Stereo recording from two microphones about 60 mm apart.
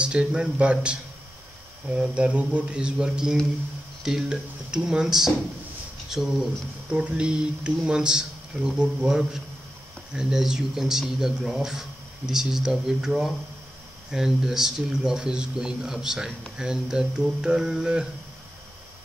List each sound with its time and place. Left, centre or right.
0.0 s speech: centre
6.9 s speech: centre